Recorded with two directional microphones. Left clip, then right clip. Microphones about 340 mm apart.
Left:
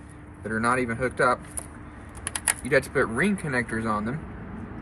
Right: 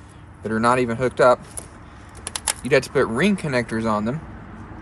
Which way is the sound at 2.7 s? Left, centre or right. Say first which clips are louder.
Right 5 dB; centre.